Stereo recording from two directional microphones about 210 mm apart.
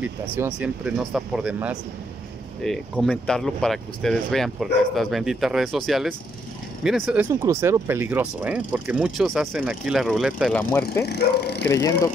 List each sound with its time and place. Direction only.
0.6 s speech: 5° right (ahead or behind)
10.6 s speech: 10° left (ahead or behind)
11.1 s speech: 50° left (ahead or behind)
11.7 s speech: 15° left (ahead or behind)